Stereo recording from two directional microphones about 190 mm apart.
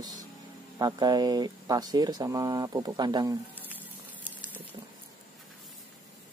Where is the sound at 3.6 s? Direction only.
10° right (ahead or behind).